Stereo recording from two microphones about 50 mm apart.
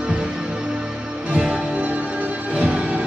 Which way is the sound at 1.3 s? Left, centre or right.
Right.